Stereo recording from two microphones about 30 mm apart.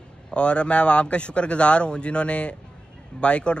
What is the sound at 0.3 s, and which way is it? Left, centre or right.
Speech, left.